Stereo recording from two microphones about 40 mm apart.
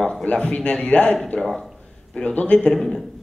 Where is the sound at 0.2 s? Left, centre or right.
Left.